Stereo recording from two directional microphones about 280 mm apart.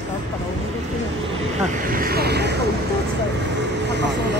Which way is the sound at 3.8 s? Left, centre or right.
Right.